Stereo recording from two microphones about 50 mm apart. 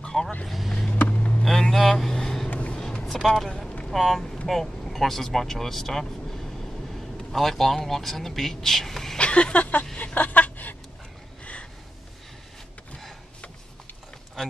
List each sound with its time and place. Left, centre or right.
0.0 s vehicle: centre
0.9 s vehicle: left
1.4 s vehicle: centre
2.5 s music: left
2.8 s music: centre
3.9 s speech: centre
9.2 s speech: left
9.9 s a sound: left